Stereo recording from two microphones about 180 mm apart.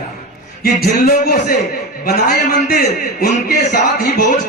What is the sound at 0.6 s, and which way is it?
A man's voice, 55° left (ahead or behind).